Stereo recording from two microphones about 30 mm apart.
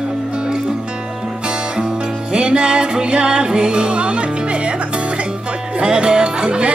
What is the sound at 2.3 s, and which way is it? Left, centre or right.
Music, right.